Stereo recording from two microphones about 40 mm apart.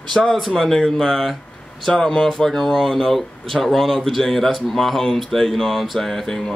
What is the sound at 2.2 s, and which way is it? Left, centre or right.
Speech, centre.